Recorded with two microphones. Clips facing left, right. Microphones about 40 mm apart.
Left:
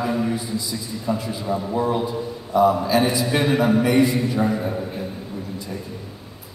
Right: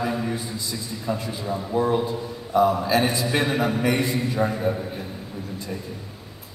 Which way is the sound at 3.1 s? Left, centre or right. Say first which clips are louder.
Left 3 dB; centre.